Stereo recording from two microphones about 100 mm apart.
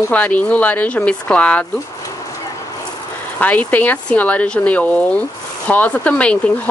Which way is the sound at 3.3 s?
15° left (ahead or behind).